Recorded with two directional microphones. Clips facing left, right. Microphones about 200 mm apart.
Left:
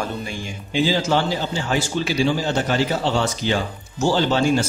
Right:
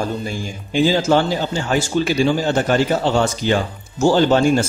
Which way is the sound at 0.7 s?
50° right (ahead or behind).